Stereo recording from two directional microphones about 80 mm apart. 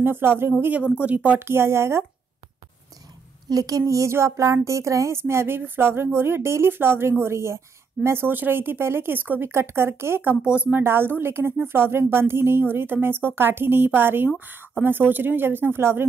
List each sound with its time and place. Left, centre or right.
0.0 s speech: right
1.5 s speech: right
3.4 s speech: right